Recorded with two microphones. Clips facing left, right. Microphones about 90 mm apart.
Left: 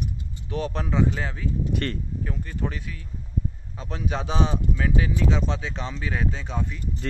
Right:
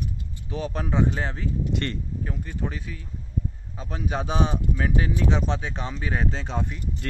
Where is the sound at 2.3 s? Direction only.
20° right (ahead or behind).